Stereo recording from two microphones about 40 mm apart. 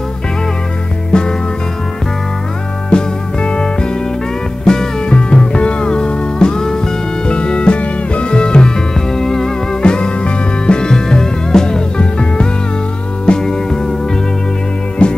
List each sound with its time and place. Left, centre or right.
1.1 s music: left
2.9 s music: left
15.0 s music: left